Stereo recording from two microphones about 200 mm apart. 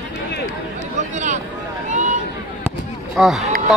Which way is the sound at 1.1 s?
35° right (ahead or behind).